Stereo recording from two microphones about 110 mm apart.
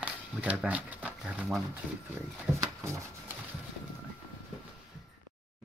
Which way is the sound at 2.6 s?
25° right (ahead or behind).